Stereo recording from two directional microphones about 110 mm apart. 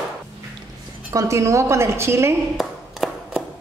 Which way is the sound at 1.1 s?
30° right (ahead or behind).